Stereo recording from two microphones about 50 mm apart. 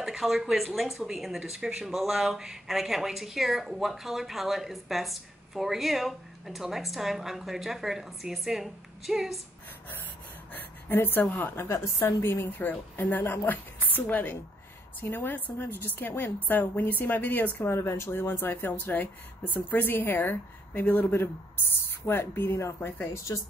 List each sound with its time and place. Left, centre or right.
0.0 s speech: centre
10.5 s a sound: left
11.5 s a woman's voice: left
12.0 s speech: left
12.5 s a woman's voice: left
17.6 s a woman's voice: left
22.0 s speech: left
23.1 s a woman's voice: left